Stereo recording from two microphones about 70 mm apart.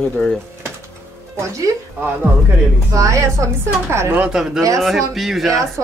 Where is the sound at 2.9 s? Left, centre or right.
Right.